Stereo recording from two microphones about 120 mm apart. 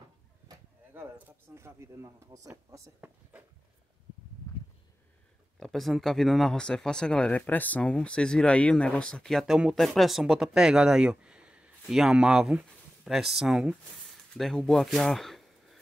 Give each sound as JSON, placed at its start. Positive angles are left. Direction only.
{"t": 0.9, "sound": "speech", "side_deg": -15}
{"t": 5.6, "sound": "speech", "side_deg": 0}